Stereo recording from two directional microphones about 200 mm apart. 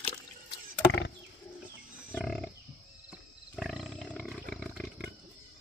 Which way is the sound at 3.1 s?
Centre (ahead or behind).